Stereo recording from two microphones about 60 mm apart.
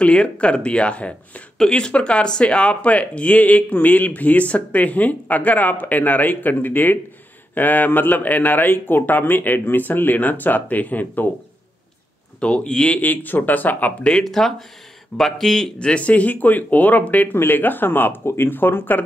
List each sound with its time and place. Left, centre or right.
0.0 s speech: centre
12.4 s speech: centre
13.0 s speech: left
14.1 s speech: centre
15.8 s speech: left